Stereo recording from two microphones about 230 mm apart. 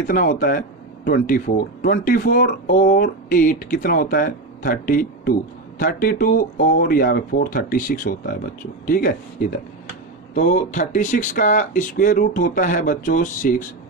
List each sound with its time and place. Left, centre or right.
0.0 s speech: left
10.3 s speech: left